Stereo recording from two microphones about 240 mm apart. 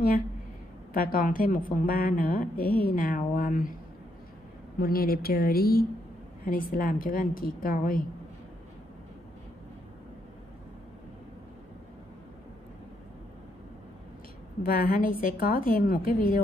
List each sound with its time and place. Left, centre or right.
0.9 s a woman's voice: left
4.7 s a woman's voice: left
14.6 s a woman's voice: left